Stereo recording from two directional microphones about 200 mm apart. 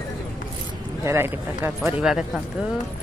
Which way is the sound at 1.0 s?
15° right (ahead or behind).